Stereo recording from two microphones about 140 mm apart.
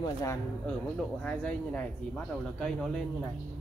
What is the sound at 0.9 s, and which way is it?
Speech, 10° left (ahead or behind).